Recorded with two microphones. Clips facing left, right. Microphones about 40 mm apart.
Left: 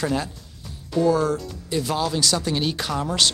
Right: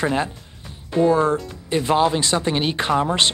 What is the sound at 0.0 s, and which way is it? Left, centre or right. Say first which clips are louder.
Speech: right 3 dB; right.